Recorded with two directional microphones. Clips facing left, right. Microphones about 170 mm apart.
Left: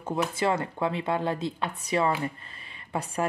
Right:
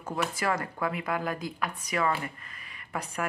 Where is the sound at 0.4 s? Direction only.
25° left (ahead or behind).